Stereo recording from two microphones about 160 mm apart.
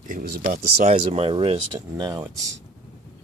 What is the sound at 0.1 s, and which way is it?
Speech, 75° right (ahead or behind).